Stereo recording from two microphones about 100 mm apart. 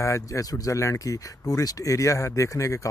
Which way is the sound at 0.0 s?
30° left (ahead or behind).